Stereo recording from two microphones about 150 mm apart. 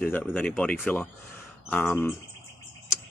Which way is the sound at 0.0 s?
10° left (ahead or behind).